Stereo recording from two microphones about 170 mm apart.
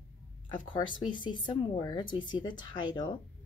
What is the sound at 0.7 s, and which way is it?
Speech, 25° left (ahead or behind).